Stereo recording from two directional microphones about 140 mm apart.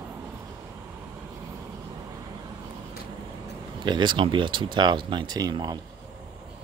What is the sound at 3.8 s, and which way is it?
Speech, 35° right (ahead or behind).